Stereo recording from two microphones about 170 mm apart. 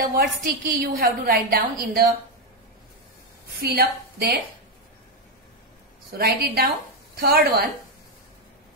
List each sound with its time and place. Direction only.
0.1 s a woman's voice: 60° right (ahead or behind)
3.5 s a woman's voice: 60° right (ahead or behind)
6.1 s a woman's voice: 65° right (ahead or behind)